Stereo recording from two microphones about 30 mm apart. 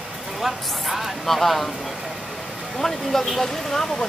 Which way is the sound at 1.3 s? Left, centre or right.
Centre.